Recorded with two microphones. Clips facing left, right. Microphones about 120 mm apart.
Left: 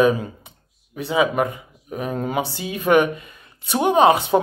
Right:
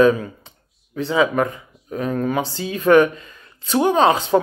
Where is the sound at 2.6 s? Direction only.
15° left (ahead or behind).